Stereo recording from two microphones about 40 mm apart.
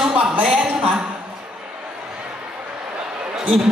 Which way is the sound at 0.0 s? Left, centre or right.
Right.